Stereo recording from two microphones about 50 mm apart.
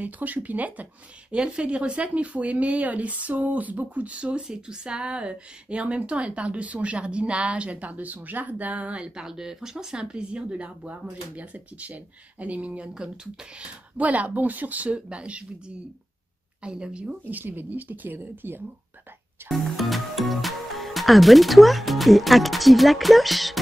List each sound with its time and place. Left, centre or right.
0.0 s speech: right
12.9 s speech: centre
13.9 s speech: right
16.6 s speech: centre
17.2 s speech: right
19.5 s speech: centre